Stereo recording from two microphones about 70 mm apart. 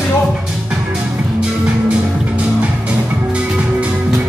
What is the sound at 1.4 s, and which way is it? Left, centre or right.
Music, centre.